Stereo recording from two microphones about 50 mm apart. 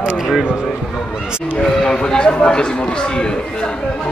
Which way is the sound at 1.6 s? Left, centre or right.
Centre.